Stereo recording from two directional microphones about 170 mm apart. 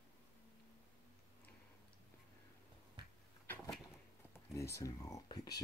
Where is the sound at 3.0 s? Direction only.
25° right (ahead or behind).